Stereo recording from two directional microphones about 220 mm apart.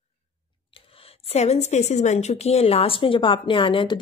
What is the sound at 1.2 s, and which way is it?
A woman's voice, 30° left (ahead or behind).